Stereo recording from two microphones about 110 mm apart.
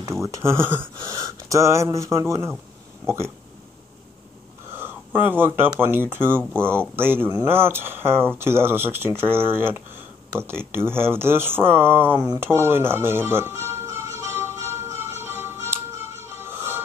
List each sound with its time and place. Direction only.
0.1 s speech: 25° right (ahead or behind)
4.7 s speech: 20° right (ahead or behind)
12.4 s music: 20° right (ahead or behind)